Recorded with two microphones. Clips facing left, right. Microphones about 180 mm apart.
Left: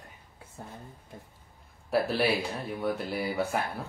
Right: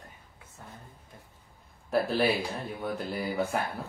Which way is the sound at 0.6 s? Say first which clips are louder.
Left 5 dB; 35° left (ahead or behind).